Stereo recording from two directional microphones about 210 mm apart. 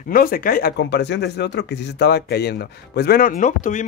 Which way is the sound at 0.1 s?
45° left (ahead or behind).